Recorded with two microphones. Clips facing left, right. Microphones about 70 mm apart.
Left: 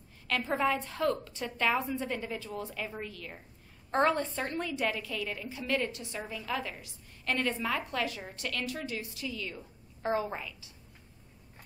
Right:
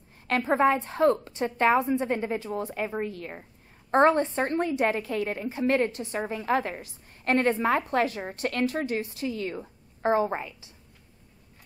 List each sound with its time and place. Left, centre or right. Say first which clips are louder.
0.3 s a woman's voice: right 7 dB; right